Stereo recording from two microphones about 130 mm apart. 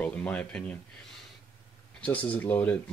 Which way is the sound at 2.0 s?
10° left (ahead or behind).